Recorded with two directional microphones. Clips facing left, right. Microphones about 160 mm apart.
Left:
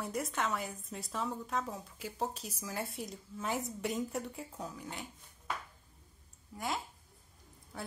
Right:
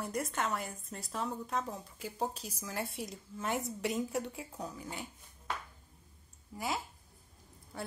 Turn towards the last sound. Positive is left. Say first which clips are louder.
# right 1 dB
turn(degrees=0)  # may be behind; listen again after turning